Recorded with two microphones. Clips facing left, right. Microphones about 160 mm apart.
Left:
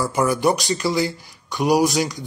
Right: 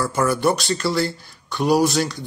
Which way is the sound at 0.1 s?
15° left (ahead or behind).